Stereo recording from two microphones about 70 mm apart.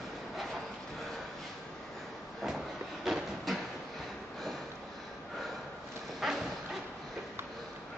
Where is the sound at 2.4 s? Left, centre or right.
Centre.